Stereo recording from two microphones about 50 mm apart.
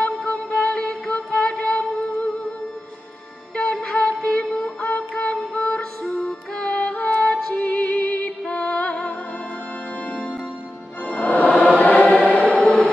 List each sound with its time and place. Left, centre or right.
0.2 s music: centre
3.5 s music: centre
4.7 s music: left
7.5 s music: left
8.2 s music: centre
11.1 s music: left
11.5 s choir: centre